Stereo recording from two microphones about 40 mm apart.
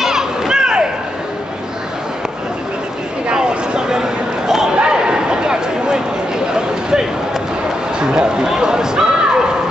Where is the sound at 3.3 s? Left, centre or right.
Centre.